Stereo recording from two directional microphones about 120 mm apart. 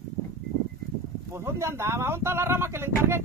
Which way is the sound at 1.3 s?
25° right (ahead or behind).